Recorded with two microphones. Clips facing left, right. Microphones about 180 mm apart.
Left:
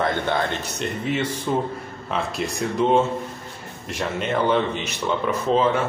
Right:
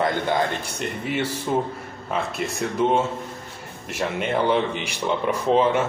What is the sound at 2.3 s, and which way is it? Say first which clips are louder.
Speech: left 1 dB; centre (ahead or behind).